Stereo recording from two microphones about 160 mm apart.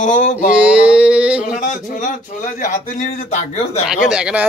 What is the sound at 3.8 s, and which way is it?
Speech, 5° right (ahead or behind).